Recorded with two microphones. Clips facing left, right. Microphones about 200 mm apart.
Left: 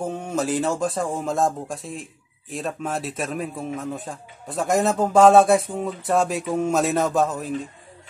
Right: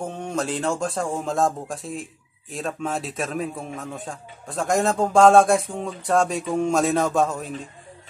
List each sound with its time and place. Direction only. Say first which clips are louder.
0.0 s a man's voice: left 2 dB; 5° left (ahead or behind)